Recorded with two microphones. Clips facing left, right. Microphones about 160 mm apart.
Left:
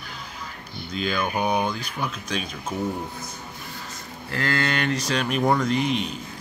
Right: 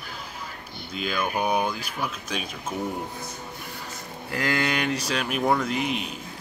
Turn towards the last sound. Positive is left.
turn(degrees=-5)  # may be behind; listen again after turning